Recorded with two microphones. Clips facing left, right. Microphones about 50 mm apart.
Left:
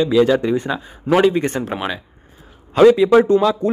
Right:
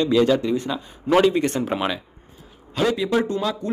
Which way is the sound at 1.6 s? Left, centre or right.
Centre.